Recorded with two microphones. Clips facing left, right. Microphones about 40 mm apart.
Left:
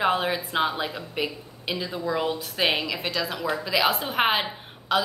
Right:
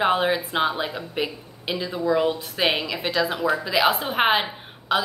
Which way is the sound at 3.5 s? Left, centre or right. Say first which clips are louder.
Right 1 dB; centre.